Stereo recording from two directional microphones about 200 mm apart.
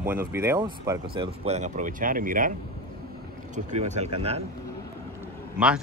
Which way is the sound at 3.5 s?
35° right (ahead or behind).